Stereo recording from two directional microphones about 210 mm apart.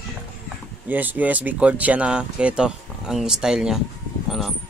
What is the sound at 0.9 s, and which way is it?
Speech, 10° right (ahead or behind).